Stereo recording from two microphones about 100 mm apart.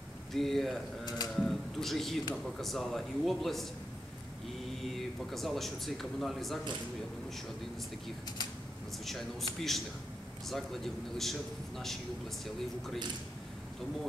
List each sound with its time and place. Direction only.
0.3 s speech: centre (ahead or behind)
1.0 s a sound: 40° left (ahead or behind)
1.3 s a sound: centre (ahead or behind)
2.6 s speech: centre (ahead or behind)
4.8 s speech: centre (ahead or behind)
9.0 s speech: centre (ahead or behind)